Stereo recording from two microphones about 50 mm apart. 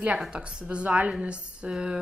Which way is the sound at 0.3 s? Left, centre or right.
Right.